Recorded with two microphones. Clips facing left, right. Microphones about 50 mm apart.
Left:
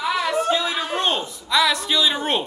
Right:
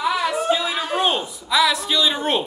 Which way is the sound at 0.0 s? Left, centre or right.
Centre.